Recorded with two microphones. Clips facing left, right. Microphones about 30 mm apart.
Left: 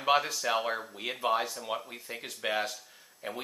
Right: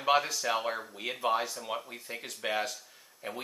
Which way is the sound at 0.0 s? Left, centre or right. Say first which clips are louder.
Even; centre.